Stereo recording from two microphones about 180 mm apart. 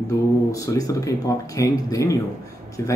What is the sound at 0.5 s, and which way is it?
Speech, 20° left (ahead or behind).